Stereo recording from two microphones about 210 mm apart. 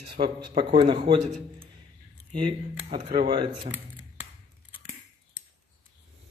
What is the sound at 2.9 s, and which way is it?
Speech, 30° right (ahead or behind).